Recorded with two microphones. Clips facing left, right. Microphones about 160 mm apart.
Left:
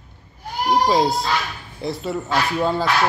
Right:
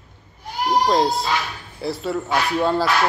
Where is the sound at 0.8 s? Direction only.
Centre (ahead or behind).